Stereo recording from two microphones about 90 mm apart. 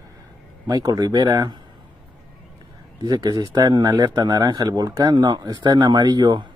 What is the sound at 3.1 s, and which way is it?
Speech, 55° right (ahead or behind).